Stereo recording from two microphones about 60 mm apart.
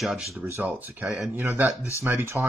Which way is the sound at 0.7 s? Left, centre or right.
Right.